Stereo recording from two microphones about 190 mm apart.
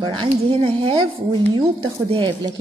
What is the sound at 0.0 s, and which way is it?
Speech, 25° right (ahead or behind).